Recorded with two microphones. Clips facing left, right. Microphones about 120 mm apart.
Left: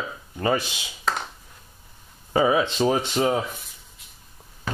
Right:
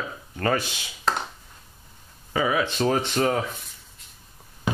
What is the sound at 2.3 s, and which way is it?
Speech, 25° left (ahead or behind).